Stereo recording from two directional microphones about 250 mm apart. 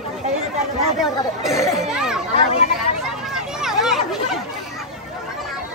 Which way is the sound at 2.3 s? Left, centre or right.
Left.